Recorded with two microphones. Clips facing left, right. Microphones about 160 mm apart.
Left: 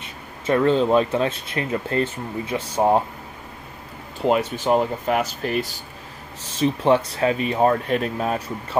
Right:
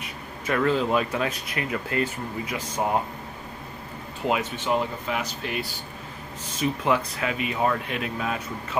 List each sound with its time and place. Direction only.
0.0 s speech: 30° left (ahead or behind)
4.3 s speech: 40° left (ahead or behind)
6.6 s speech: 30° left (ahead or behind)